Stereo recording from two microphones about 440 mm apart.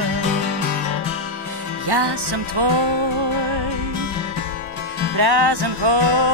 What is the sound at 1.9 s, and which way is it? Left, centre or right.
Music, right.